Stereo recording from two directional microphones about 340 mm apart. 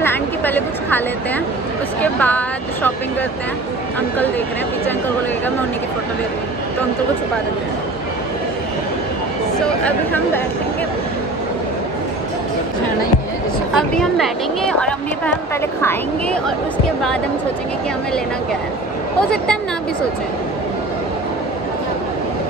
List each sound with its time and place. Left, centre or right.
0.0 s a woman's voice: centre
9.8 s a woman's voice: centre
13.7 s a woman's voice: centre
19.3 s a woman's voice: centre